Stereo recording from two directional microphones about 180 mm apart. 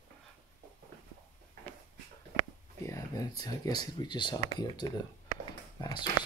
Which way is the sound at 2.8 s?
20° left (ahead or behind).